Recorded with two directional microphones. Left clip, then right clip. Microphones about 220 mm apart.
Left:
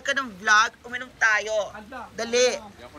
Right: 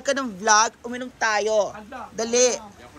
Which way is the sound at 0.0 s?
20° right (ahead or behind).